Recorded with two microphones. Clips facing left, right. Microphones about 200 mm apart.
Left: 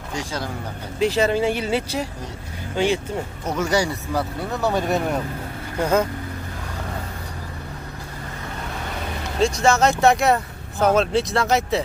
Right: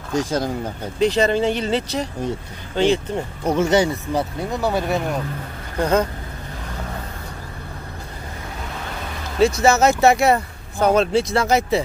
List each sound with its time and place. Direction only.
0.1 s speech: 45° right (ahead or behind)
0.9 s speech: 5° left (ahead or behind)
3.4 s speech: 25° right (ahead or behind); by 4.9 s 10° right (ahead or behind)
4.9 s speech: centre (ahead or behind)
9.6 s speech: 5° right (ahead or behind)